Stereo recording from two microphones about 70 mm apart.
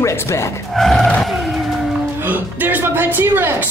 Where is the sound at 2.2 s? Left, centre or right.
Right.